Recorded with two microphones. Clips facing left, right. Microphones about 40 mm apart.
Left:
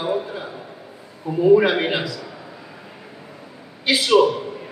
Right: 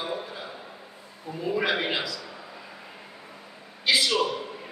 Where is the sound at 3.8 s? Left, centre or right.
Left.